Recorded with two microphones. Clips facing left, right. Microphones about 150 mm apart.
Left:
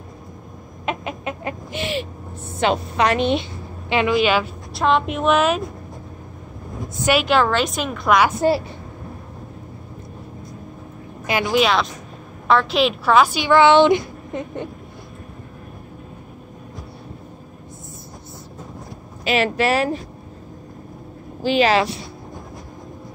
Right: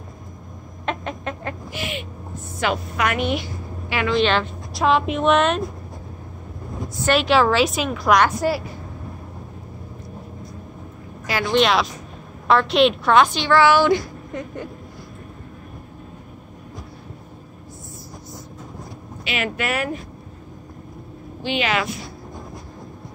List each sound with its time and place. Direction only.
0.8 s chicken: 10° left (ahead or behind)
1.7 s owl: 30° left (ahead or behind)
2.6 s a woman's voice: 25° left (ahead or behind)
4.1 s a woman's voice: 10° left (ahead or behind)
7.1 s a woman's voice: centre (ahead or behind)
8.4 s a woman's voice: 25° left (ahead or behind)
11.5 s a woman's voice: centre (ahead or behind); by 14.7 s 20° left (ahead or behind)
19.2 s a woman's voice: 35° left (ahead or behind)
21.4 s a woman's voice: 40° left (ahead or behind)